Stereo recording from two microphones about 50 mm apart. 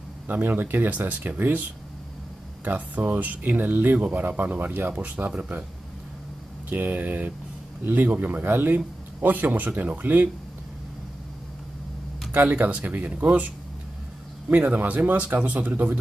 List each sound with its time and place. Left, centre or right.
0.3 s a man's voice: right
2.6 s a man's voice: right
6.7 s a man's voice: right
12.4 s a man's voice: right
14.5 s a man's voice: right